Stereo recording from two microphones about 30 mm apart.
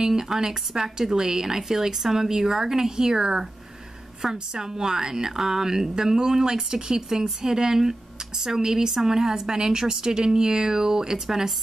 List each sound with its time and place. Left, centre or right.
0.0 s a woman's voice: centre